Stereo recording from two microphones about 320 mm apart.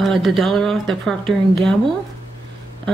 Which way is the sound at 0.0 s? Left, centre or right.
Centre.